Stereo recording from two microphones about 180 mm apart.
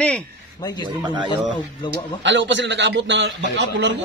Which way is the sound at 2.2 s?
90° right.